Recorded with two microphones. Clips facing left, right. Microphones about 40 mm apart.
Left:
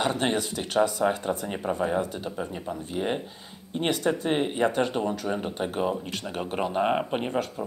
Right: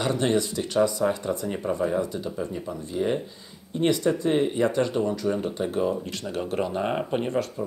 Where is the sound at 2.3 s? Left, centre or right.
Centre.